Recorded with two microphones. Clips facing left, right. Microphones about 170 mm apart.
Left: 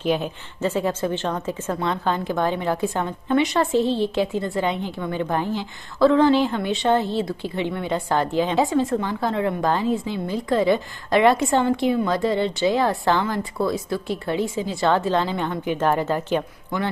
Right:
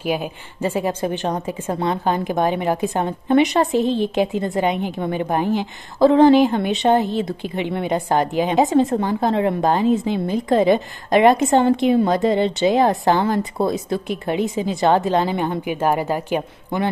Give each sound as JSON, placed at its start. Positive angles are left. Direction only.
{"t": 0.0, "sound": "a woman's voice", "side_deg": -10}
{"t": 1.3, "sound": "speech", "side_deg": -30}
{"t": 1.9, "sound": "a woman's voice", "side_deg": -15}